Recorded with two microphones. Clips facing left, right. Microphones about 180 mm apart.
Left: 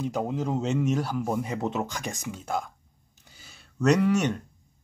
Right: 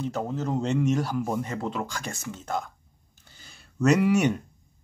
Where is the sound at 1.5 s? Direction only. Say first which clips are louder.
Left 2 dB; 20° left (ahead or behind).